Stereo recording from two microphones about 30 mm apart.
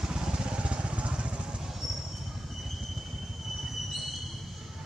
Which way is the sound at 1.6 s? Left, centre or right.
Centre.